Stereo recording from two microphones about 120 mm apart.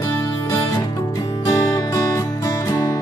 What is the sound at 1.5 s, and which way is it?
Music, 30° left (ahead or behind).